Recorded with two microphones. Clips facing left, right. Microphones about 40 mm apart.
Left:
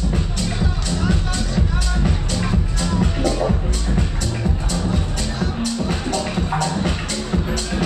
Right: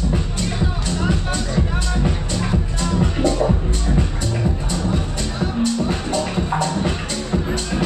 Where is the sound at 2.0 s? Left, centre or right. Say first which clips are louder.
Even; centre.